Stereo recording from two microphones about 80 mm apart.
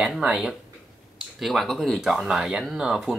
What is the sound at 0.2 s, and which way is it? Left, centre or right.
Speech, centre.